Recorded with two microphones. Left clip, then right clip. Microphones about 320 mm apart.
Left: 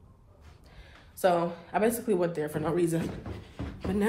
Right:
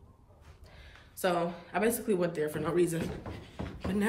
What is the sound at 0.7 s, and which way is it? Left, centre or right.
Speech, centre.